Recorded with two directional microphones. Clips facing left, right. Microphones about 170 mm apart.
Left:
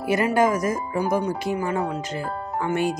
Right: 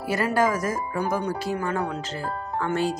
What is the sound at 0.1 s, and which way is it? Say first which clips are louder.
Speech: left 3 dB; 20° left (ahead or behind).